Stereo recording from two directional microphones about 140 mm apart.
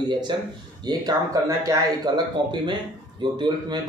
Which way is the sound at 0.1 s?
35° right (ahead or behind).